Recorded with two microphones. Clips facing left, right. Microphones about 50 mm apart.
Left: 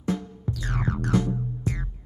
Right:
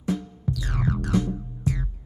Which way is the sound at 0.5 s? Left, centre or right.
Left.